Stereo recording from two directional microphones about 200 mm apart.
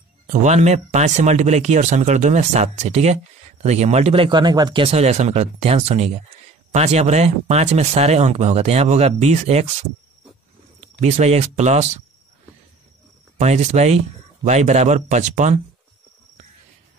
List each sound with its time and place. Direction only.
0.3 s speech: 35° right (ahead or behind)
11.0 s speech: 35° right (ahead or behind)
13.4 s speech: 35° right (ahead or behind)